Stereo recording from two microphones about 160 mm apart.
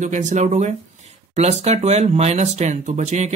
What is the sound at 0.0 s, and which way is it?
Speech, 50° right (ahead or behind).